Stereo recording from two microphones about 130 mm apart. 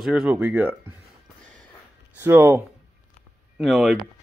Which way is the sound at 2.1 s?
15° right (ahead or behind).